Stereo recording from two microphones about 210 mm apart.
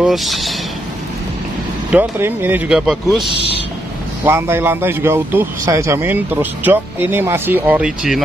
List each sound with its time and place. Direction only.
0.0 s speech: centre (ahead or behind)
1.9 s a man's voice: 10° right (ahead or behind)